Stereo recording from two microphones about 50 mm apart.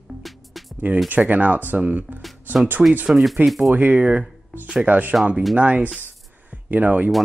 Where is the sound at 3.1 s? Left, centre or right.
Centre.